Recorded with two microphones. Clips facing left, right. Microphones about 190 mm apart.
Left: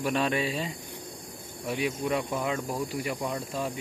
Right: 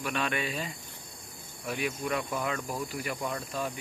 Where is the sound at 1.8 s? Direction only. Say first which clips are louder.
Left 3 dB; 20° left (ahead or behind).